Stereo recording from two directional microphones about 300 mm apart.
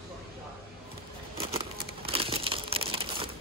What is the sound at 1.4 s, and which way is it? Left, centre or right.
Crumpling, centre.